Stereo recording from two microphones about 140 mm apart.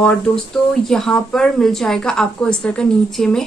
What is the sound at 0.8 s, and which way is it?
Speech, 5° left (ahead or behind).